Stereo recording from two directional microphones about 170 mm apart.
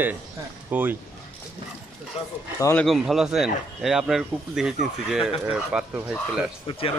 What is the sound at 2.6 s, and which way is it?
Speech, 15° left (ahead or behind).